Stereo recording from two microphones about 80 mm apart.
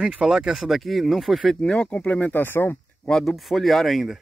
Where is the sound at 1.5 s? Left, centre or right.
Centre; by 2.7 s left.